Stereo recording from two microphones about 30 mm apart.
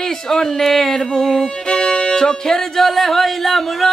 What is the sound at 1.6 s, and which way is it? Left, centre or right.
Music, left.